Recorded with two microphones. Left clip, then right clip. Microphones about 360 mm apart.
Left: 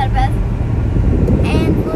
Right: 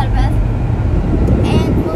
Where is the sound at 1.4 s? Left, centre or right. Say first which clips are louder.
Right 2 dB; centre.